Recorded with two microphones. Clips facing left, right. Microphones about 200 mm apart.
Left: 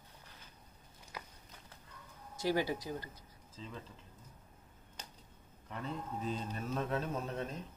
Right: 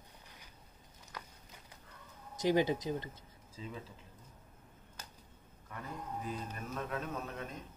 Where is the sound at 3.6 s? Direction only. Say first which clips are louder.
Right 3 dB; 5° right (ahead or behind).